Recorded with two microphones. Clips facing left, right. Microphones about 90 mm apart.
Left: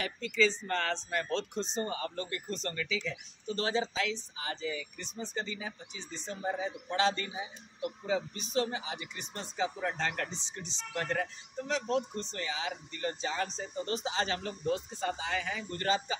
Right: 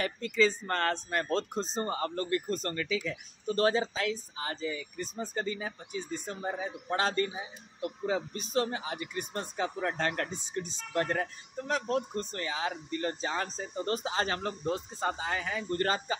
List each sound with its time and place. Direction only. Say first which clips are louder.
0.0 s speech: right 2 dB; 45° right (ahead or behind)